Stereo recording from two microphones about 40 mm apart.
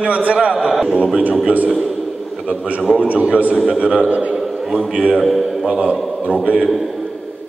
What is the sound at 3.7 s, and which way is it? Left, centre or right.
A man's voice, right.